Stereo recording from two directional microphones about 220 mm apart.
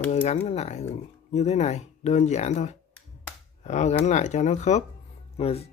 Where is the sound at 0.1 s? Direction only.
30° left (ahead or behind).